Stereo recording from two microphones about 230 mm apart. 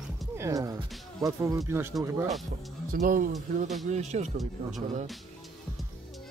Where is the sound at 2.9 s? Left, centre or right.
Right.